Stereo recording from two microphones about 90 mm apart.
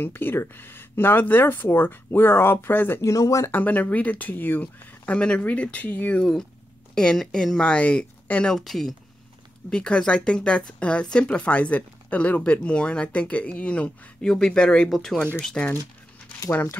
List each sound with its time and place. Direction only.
0.0 s speech: 25° left (ahead or behind)
3.0 s speech: 40° left (ahead or behind)
3.5 s speech: 20° left (ahead or behind)
7.0 s speech: 10° left (ahead or behind)